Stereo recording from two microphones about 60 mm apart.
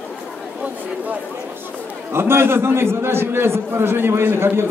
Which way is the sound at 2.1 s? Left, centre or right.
Right.